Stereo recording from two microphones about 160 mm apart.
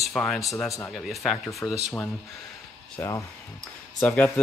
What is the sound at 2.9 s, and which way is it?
Speech, 20° left (ahead or behind).